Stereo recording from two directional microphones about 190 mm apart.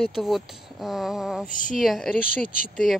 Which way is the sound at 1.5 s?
45° left (ahead or behind).